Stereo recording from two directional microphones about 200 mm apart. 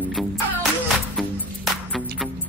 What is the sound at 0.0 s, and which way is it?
Music, 5° right (ahead or behind).